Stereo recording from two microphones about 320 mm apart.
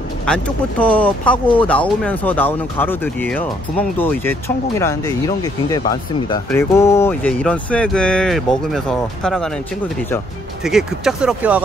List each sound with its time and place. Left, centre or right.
0.3 s speech: centre